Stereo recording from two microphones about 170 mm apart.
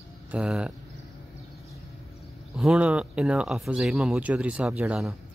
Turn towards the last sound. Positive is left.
turn(degrees=-5)  # may be behind; listen again after turning